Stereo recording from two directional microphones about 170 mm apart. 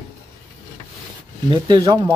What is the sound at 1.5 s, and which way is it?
Speech, 25° right (ahead or behind).